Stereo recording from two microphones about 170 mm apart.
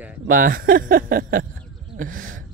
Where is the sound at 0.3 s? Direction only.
55° right (ahead or behind).